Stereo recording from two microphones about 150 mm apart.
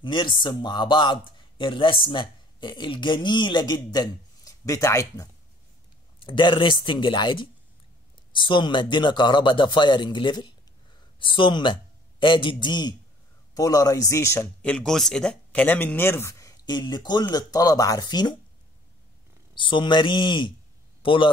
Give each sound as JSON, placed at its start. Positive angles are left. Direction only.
{"t": 0.0, "sound": "a man's voice", "side_deg": 30}
{"t": 6.1, "sound": "a man's voice", "side_deg": 35}
{"t": 19.5, "sound": "a man's voice", "side_deg": 35}